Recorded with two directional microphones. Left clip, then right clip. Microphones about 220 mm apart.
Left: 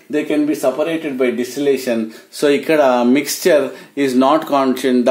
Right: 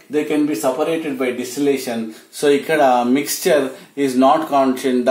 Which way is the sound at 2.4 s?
50° left (ahead or behind).